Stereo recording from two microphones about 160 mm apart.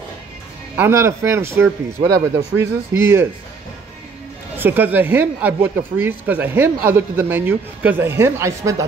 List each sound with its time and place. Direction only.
0.7 s speech: 15° right (ahead or behind)
4.6 s speech: 10° right (ahead or behind)